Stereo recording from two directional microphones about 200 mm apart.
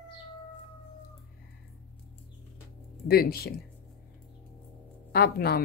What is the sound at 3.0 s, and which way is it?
Speech, 50° left (ahead or behind).